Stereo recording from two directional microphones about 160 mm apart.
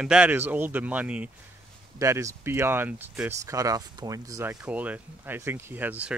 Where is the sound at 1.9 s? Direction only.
20° right (ahead or behind).